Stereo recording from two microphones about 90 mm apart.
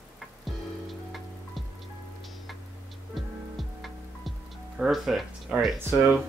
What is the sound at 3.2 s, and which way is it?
Music, centre (ahead or behind).